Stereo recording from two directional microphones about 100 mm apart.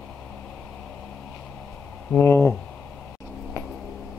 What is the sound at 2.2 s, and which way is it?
Speech, 25° left (ahead or behind).